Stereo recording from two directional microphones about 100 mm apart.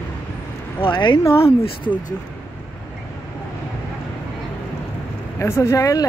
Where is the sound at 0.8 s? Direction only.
55° left (ahead or behind).